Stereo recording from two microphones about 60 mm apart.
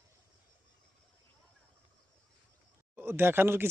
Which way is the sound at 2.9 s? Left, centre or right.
Right.